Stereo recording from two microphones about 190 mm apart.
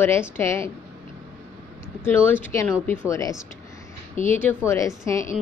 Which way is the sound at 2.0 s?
10° left (ahead or behind).